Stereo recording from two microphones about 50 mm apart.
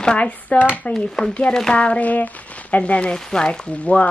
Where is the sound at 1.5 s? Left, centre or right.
Centre.